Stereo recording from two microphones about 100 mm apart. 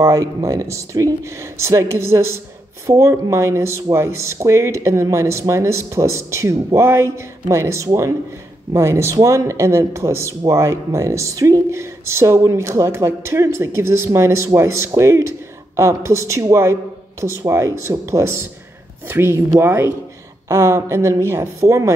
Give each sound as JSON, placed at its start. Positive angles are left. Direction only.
{"t": 0.0, "sound": "speech", "side_deg": -30}